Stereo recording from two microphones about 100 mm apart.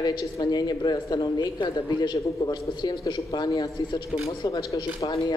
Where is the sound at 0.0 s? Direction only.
45° left (ahead or behind).